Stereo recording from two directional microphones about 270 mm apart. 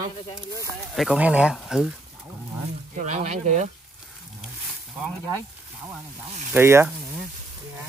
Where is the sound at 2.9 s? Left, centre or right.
Right.